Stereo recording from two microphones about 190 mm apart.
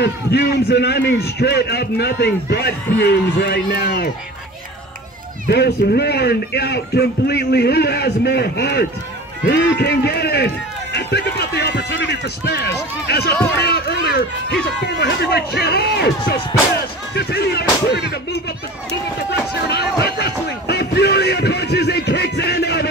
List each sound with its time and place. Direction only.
0.0 s a man's voice: 60° left (ahead or behind)
5.5 s a man's voice: 60° left (ahead or behind)
19.7 s music: 60° left (ahead or behind)